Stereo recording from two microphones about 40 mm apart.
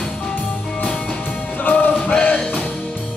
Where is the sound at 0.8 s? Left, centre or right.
Left.